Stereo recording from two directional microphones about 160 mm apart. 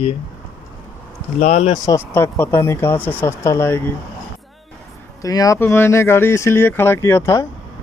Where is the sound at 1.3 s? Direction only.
50° left (ahead or behind).